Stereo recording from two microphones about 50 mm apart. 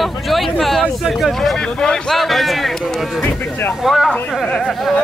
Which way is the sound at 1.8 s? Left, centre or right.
Centre.